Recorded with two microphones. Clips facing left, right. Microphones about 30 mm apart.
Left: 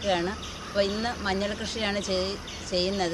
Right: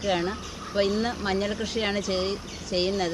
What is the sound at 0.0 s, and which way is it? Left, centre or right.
Speech, centre.